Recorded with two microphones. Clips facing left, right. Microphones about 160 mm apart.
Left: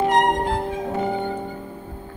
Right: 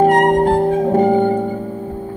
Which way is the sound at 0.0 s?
45° right (ahead or behind).